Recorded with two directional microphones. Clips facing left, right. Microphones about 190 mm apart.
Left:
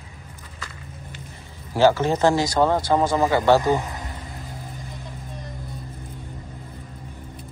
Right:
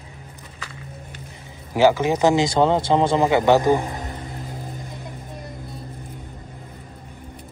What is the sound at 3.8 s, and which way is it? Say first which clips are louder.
Music: right 4 dB; 45° right (ahead or behind).